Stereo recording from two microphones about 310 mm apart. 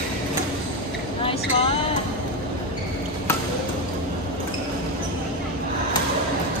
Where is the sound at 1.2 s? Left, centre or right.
Centre.